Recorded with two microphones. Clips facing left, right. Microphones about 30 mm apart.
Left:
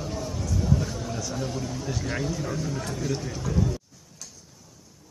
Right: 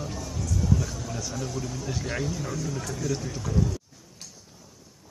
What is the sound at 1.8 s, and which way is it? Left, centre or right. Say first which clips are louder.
Speech: even; centre.